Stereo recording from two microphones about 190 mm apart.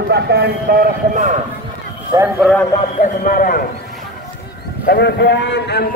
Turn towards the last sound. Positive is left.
turn(degrees=60)  # may be behind; listen again after turning